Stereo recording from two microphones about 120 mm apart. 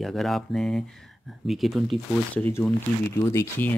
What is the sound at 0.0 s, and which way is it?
Speech, centre (ahead or behind).